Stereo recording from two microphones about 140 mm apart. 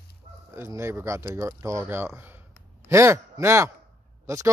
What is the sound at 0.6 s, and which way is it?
A man's voice, 20° right (ahead or behind).